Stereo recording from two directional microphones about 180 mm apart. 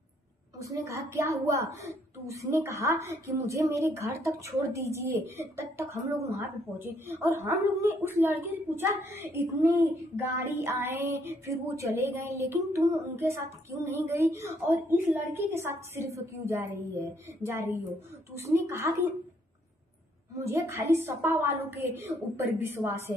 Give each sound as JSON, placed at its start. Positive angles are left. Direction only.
{"t": 0.6, "sound": "a woman's voice", "side_deg": -15}
{"t": 20.3, "sound": "a woman's voice", "side_deg": -15}